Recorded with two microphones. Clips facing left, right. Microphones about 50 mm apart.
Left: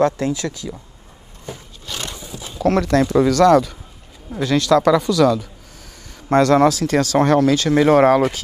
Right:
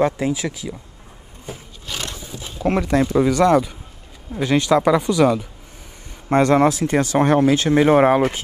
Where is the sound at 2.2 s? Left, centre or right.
Right.